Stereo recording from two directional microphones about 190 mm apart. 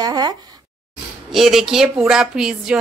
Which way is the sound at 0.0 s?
20° right (ahead or behind).